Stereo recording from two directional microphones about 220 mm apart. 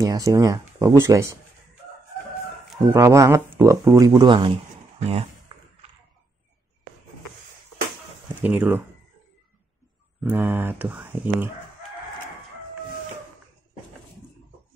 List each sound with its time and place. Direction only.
0.0 s speech: 15° right (ahead or behind)
2.9 s speech: 15° right (ahead or behind)
5.5 s basketball bounce: 20° right (ahead or behind)
8.4 s speech: 5° right (ahead or behind)
10.3 s speech: 10° right (ahead or behind)